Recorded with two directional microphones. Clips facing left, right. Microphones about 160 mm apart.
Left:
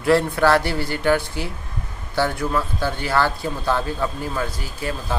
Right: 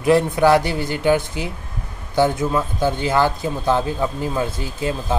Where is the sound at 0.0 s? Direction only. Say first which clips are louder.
Right 2 dB; 15° right (ahead or behind).